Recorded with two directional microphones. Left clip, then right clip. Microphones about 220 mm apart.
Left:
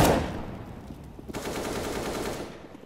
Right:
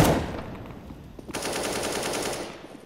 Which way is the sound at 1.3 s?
50° right (ahead or behind).